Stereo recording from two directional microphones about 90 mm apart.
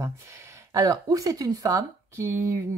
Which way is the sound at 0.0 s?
35° right (ahead or behind).